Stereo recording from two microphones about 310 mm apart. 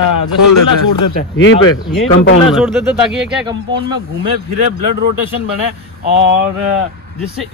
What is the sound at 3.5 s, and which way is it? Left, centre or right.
Speech, centre.